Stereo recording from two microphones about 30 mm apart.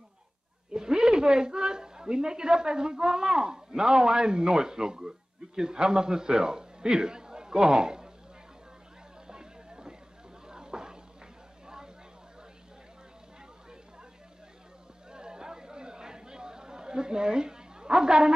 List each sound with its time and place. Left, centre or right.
0.7 s a man's voice: right
9.3 s a sound: right
15.0 s chatter: right